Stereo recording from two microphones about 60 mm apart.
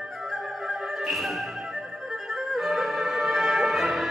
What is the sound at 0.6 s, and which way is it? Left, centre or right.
Music, centre.